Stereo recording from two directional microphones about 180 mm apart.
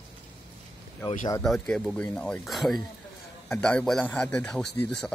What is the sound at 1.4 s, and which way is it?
A man's voice, centre (ahead or behind).